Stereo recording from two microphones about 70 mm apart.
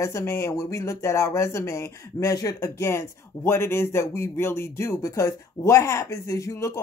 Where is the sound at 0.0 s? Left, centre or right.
Left.